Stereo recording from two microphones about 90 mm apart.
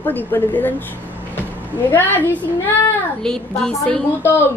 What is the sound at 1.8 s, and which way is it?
Speech, 25° left (ahead or behind).